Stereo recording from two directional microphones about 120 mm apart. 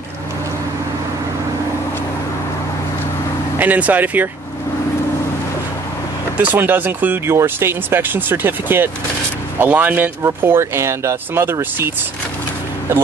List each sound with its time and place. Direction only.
3.5 s speech: 15° right (ahead or behind)
6.3 s speech: 15° right (ahead or behind)